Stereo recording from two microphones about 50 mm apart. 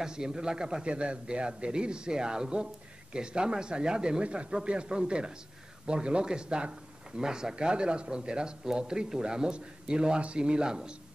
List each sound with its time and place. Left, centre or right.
0.0 s a man's voice: centre